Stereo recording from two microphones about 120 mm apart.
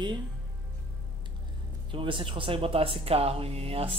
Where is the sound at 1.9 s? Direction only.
45° right (ahead or behind).